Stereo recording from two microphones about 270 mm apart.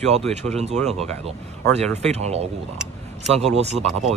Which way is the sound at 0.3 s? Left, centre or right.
Right.